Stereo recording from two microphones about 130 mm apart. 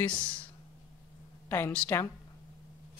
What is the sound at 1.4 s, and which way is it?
Speech, 15° left (ahead or behind).